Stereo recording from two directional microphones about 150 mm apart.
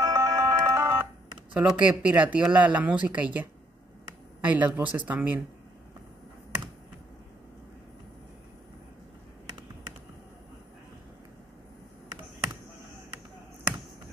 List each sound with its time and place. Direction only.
0.0 s ringtone: 20° right (ahead or behind)
1.5 s speech: 10° right (ahead or behind)